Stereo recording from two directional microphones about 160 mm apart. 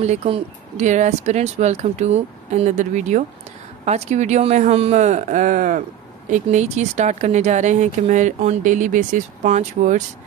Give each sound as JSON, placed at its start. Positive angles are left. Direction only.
{"t": 0.0, "sound": "speech", "side_deg": -40}